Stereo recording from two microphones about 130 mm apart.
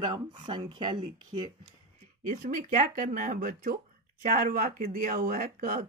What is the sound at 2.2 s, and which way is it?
Speech, 90° right.